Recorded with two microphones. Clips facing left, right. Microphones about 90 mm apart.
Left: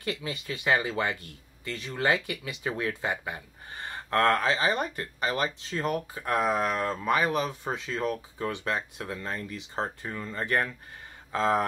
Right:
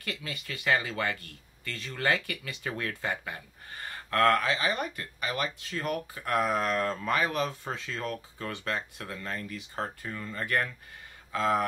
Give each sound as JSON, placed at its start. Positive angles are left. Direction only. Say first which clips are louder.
{"t": 0.0, "sound": "speech", "louder": "left 5 dB", "side_deg": 20}